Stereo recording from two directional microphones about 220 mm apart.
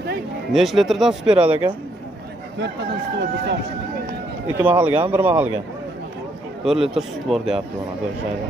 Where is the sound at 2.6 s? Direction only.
50° right (ahead or behind).